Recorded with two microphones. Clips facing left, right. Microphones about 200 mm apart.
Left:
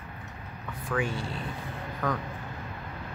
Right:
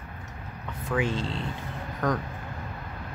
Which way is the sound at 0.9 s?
20° right (ahead or behind).